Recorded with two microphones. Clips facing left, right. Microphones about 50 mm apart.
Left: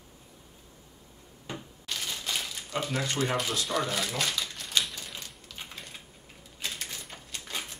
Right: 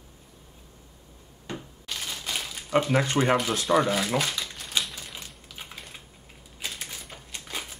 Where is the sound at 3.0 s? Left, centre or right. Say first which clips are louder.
Right 7 dB; right.